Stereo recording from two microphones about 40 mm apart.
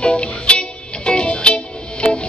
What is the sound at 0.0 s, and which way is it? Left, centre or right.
Music, left.